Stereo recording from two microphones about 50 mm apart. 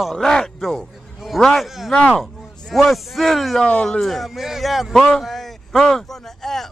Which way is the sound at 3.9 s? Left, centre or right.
Centre.